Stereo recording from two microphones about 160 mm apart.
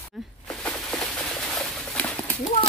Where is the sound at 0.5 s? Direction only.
5° left (ahead or behind).